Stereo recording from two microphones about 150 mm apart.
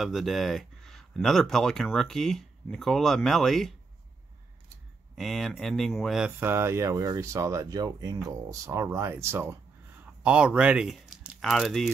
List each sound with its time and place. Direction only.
0.0 s speech: centre (ahead or behind)
5.1 s speech: centre (ahead or behind)